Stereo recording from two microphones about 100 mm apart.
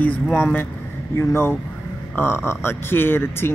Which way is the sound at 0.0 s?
15° left (ahead or behind).